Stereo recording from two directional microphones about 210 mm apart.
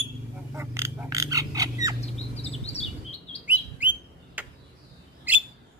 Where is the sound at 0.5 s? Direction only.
10° right (ahead or behind).